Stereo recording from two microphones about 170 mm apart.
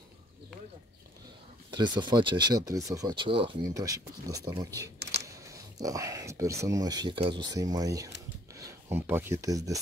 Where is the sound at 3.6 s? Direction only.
20° right (ahead or behind).